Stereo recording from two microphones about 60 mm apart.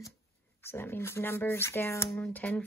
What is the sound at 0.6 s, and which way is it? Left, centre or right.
Speech, left.